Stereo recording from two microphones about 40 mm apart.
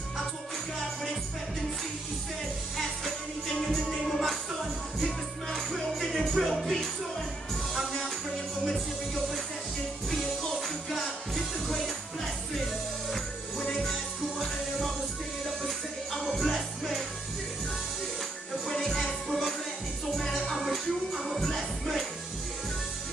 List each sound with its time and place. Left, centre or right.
3.6 s music: centre
5.5 s music: centre
8.6 s music: centre
10.5 s music: centre
13.1 s music: centre
15.6 s music: centre
18.7 s music: centre